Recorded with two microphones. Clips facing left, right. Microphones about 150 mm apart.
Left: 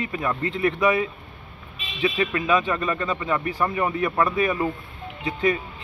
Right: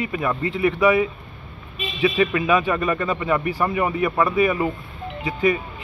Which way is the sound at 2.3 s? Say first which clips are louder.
Right 3 dB; 10° right (ahead or behind).